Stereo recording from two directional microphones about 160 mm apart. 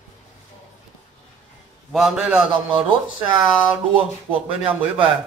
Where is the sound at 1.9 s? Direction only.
Centre (ahead or behind).